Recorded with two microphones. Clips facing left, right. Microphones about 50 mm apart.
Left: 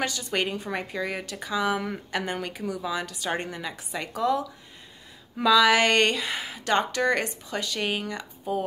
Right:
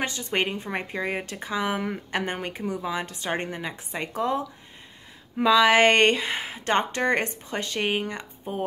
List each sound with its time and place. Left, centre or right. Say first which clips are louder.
0.0 s speech: right 1 dB; right